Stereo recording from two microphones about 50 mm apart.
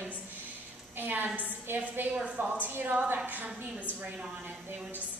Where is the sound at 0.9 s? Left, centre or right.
Right.